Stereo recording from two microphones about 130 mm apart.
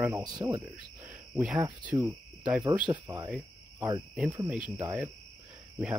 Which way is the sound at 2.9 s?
30° right (ahead or behind).